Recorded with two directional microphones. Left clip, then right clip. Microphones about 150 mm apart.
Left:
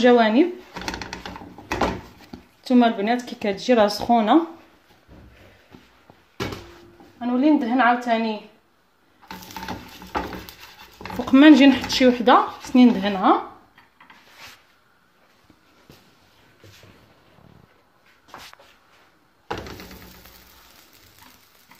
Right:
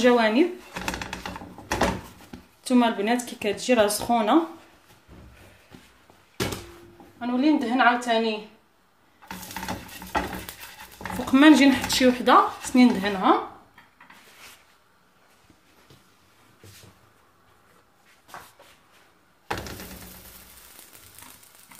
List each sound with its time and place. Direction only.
0.0 s speech: 30° left (ahead or behind)
0.7 s a sound: 15° right (ahead or behind)
2.6 s speech: 30° left (ahead or behind)
7.2 s speech: 25° left (ahead or behind)
9.5 s a sound: 5° right (ahead or behind)
11.2 s speech: 25° left (ahead or behind)